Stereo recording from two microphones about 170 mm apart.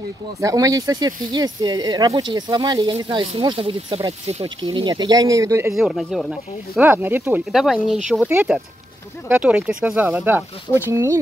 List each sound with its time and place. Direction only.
0.4 s speech: 20° right (ahead or behind)
5.8 s speech: centre (ahead or behind)
6.8 s speech: 10° right (ahead or behind)
7.5 s speech: centre (ahead or behind); by 11.1 s 15° right (ahead or behind)